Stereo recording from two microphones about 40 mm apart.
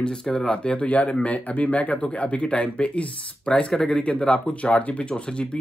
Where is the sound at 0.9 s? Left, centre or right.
Left.